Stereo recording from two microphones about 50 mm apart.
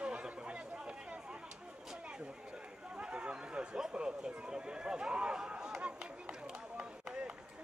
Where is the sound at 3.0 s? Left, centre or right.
Centre.